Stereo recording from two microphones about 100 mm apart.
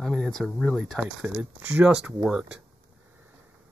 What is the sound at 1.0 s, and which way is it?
Speech, 10° right (ahead or behind).